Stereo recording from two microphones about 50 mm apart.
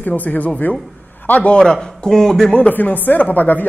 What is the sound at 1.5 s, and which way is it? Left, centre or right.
Speech, centre.